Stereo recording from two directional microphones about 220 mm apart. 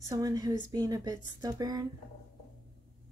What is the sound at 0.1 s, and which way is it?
A woman's voice, 15° right (ahead or behind).